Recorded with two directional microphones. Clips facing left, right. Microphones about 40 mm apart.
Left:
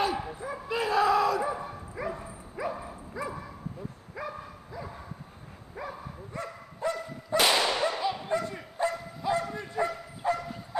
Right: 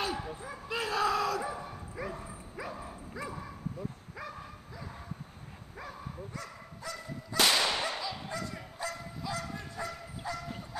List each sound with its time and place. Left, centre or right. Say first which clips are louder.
0.5 s dog: left 6 dB; centre
3.2 s bow-wow: left 5 dB; centre
5.8 s bow-wow: left 6 dB; centre
6.3 s dog: left 5 dB; left
7.3 s whip: left 3 dB; centre
8.0 s bow-wow: left 8 dB; left